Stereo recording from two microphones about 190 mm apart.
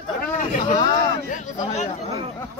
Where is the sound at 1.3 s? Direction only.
40° left (ahead or behind).